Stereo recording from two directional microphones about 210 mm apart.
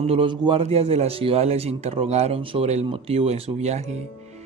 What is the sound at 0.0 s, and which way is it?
A man's voice, 25° right (ahead or behind).